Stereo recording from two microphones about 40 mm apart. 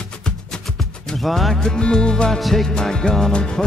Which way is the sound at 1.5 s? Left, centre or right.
Left.